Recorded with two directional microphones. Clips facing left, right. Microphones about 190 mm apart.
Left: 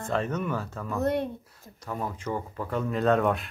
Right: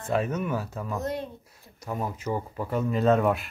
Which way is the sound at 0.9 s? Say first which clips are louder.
Left 6 dB; 60° left (ahead or behind).